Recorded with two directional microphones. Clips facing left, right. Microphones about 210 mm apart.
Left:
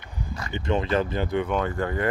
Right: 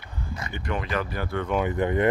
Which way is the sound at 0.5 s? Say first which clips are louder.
Left 5 dB; 25° left (ahead or behind).